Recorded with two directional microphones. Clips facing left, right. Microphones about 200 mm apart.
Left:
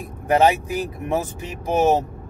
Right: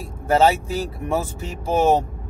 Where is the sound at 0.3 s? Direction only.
15° left (ahead or behind).